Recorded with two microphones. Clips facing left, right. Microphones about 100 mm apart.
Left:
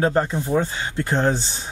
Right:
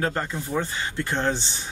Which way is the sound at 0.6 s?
15° left (ahead or behind).